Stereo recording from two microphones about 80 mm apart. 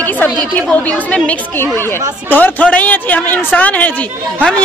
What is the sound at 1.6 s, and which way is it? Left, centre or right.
Speech, left.